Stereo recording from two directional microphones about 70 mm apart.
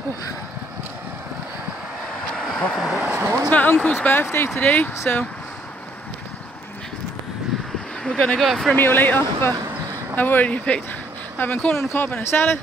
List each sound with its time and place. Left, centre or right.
2.3 s vehicle: centre
2.8 s speech: centre
3.4 s speech: left
8.0 s speech: centre
8.7 s speech: left